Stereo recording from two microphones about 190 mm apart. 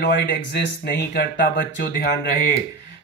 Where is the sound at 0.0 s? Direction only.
65° left (ahead or behind).